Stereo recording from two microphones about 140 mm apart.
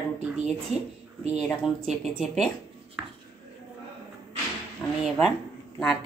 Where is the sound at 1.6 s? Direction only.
Centre (ahead or behind).